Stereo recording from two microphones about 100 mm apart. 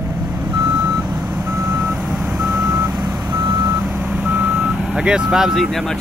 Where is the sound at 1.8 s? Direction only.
5° right (ahead or behind).